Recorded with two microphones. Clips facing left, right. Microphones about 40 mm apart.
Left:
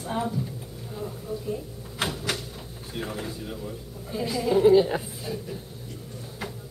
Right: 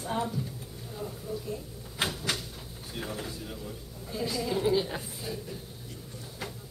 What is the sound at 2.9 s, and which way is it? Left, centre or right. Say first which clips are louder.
A man's voice: left 4 dB; centre.